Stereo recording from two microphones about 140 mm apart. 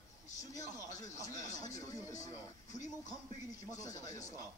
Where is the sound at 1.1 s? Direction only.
25° left (ahead or behind).